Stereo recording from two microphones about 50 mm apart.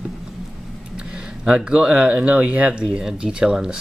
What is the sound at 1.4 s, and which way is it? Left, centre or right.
Speech, centre.